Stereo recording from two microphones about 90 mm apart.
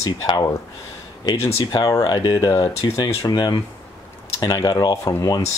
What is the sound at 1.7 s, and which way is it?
Speech, 45° left (ahead or behind).